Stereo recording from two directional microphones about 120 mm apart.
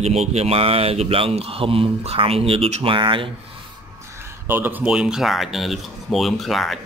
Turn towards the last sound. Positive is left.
turn(degrees=0)  # may be behind; listen again after turning